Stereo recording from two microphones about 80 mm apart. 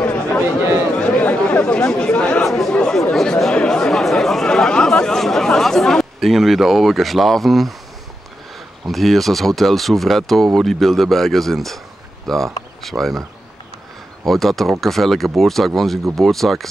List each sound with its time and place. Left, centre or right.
0.0 s chatter: centre
8.8 s speech: centre
14.2 s speech: centre